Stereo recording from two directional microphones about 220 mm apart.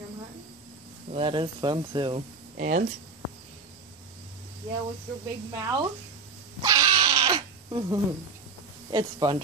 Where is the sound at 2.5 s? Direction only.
35° right (ahead or behind).